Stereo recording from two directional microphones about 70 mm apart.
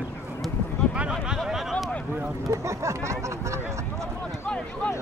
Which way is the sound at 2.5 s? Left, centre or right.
Right.